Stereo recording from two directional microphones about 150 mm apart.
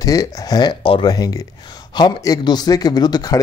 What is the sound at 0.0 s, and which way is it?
Speech, 25° left (ahead or behind).